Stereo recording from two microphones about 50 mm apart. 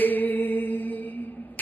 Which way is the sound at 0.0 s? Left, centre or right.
Left.